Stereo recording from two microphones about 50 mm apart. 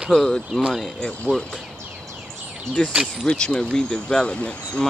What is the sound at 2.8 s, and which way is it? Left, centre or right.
Speech, left.